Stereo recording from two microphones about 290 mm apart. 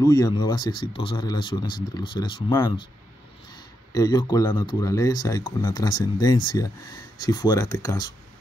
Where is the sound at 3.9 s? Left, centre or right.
Centre.